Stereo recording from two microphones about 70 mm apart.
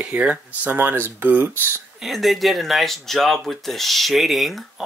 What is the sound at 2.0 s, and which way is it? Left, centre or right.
Speech, centre.